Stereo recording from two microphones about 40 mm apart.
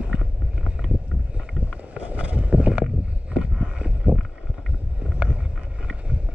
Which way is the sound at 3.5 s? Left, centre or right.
Right.